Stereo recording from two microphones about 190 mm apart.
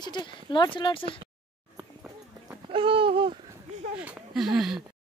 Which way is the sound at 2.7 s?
30° right (ahead or behind).